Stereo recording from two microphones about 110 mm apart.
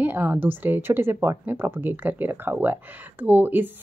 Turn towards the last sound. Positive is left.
turn(degrees=-15)  # may be behind; listen again after turning